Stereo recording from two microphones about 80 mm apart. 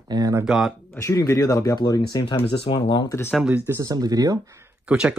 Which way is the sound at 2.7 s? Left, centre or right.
Left.